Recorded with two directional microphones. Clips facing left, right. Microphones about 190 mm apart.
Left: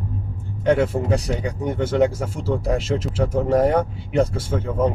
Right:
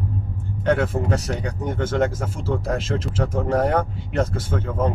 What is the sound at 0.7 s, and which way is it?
Speech, 10° left (ahead or behind).